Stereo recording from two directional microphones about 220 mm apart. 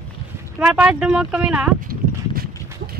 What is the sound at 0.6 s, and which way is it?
Speech, 5° right (ahead or behind).